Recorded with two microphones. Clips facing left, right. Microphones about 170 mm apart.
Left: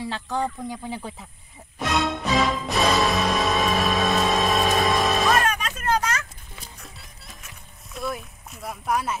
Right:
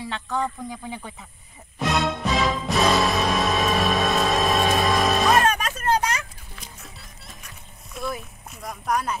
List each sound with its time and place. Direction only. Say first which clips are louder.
0.4 s speech: left 1 dB; 30° left (ahead or behind)
1.8 s music: right 1 dB; centre (ahead or behind)
5.3 s music: right 2 dB; 25° right (ahead or behind)
5.9 s a sound: right 1 dB; 20° right (ahead or behind)
6.8 s music: right 1 dB; centre (ahead or behind)